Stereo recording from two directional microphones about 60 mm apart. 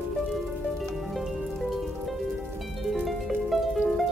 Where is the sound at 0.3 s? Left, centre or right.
Centre.